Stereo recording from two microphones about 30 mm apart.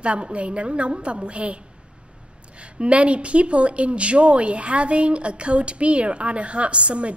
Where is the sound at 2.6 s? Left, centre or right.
Right.